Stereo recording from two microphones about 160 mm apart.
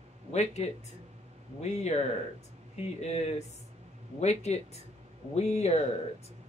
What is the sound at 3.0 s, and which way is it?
Speech, 45° left (ahead or behind).